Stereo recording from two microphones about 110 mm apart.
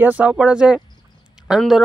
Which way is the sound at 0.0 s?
15° right (ahead or behind).